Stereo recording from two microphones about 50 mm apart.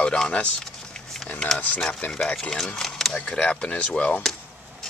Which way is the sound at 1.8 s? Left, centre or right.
Centre.